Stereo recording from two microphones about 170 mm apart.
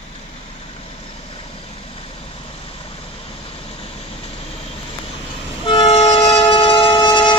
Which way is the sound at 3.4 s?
35° left (ahead or behind).